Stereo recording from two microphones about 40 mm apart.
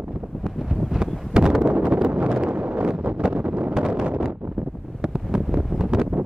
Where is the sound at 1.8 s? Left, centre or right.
Right.